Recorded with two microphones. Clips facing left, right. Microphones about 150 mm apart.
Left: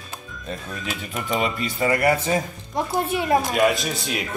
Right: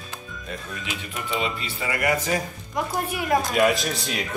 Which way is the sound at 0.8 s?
40° left (ahead or behind).